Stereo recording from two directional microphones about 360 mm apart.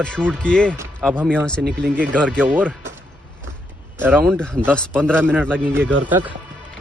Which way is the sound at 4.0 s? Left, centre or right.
Centre.